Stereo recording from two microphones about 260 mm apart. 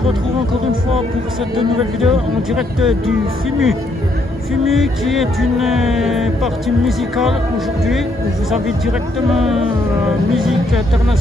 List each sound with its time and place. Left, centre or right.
2.0 s speech: centre